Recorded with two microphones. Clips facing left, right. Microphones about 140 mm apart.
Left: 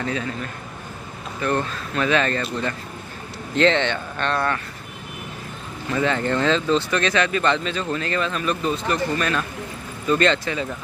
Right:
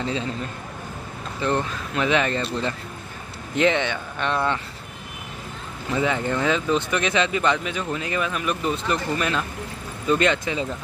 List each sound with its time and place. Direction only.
0.0 s speech: 20° right (ahead or behind)
1.4 s speech: 20° right (ahead or behind)
3.5 s speech: 10° right (ahead or behind)
5.9 s speech: 15° right (ahead or behind)